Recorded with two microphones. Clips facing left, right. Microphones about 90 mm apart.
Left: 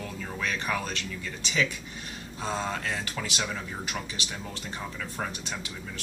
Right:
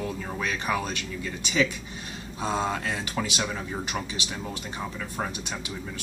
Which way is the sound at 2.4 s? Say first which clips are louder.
Right 4 dB; 20° right (ahead or behind).